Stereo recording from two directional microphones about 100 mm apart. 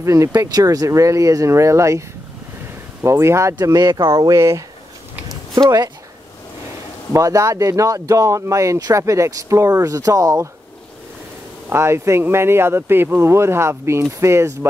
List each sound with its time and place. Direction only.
0.0 s speech: 30° right (ahead or behind)
3.5 s speech: 40° right (ahead or behind)
5.6 s speech: 45° right (ahead or behind)
7.1 s speech: 30° right (ahead or behind)
11.7 s speech: 25° right (ahead or behind)